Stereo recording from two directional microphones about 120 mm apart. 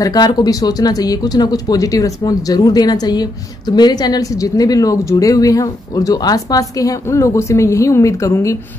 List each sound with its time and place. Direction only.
0.0 s speech: 35° left (ahead or behind)